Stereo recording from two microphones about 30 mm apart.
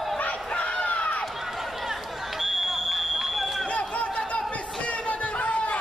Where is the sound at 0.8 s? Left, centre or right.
Left.